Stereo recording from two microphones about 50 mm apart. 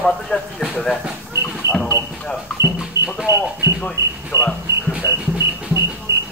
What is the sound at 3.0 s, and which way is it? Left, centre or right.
Clip-clop, right.